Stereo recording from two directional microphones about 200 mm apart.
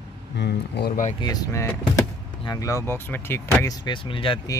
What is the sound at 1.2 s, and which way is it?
Speech, 15° left (ahead or behind).